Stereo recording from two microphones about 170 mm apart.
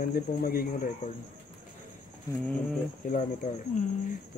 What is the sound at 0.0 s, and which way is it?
Speech, 60° left (ahead or behind).